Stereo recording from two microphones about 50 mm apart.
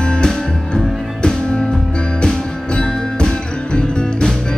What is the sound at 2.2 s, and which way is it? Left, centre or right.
Music, centre.